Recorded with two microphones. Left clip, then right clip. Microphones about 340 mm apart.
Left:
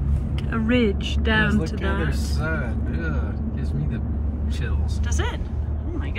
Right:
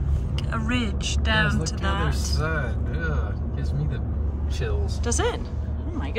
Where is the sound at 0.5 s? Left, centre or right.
Centre.